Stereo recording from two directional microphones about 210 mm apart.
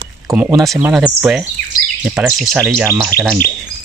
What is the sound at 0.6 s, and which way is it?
Speech, 5° right (ahead or behind).